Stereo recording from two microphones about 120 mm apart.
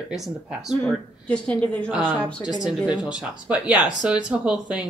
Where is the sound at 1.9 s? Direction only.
15° right (ahead or behind).